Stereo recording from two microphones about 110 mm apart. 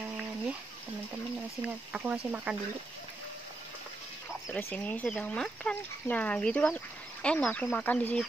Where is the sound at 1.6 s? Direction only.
10° right (ahead or behind).